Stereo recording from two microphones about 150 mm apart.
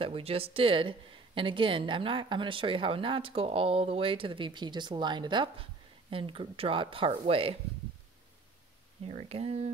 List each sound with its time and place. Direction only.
0.0 s speech: 40° right (ahead or behind)
9.0 s speech: 40° right (ahead or behind)